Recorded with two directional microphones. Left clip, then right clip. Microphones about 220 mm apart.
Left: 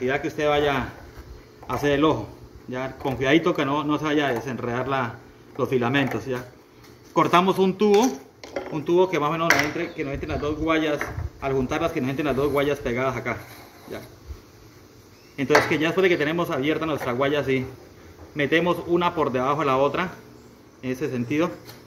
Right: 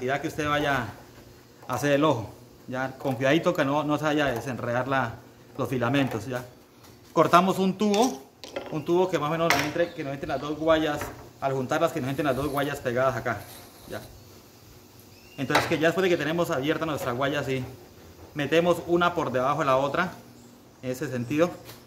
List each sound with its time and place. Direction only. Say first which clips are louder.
0.0 s a man's voice: left 4 dB; 30° right (ahead or behind)
15.3 s speech: left 5 dB; 20° right (ahead or behind)